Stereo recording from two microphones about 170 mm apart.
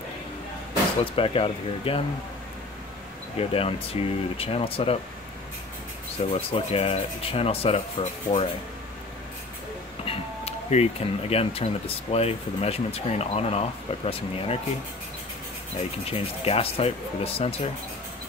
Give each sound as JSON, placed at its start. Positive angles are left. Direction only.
{"t": 1.1, "sound": "speech", "side_deg": 30}
{"t": 3.3, "sound": "speech", "side_deg": 35}
{"t": 6.3, "sound": "speech", "side_deg": 35}
{"t": 10.0, "sound": "speech", "side_deg": 35}
{"t": 16.1, "sound": "speech", "side_deg": 35}